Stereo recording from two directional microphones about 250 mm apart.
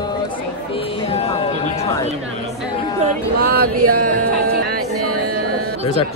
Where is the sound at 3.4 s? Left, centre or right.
Right.